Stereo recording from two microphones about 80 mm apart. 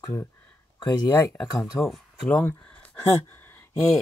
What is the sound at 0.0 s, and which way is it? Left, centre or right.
Speech, left.